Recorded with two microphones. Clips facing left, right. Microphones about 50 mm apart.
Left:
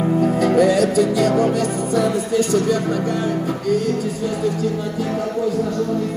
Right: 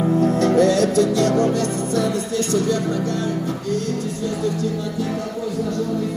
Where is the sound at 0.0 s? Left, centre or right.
Centre.